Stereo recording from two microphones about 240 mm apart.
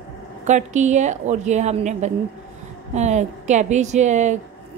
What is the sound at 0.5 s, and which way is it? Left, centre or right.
A woman's voice, right.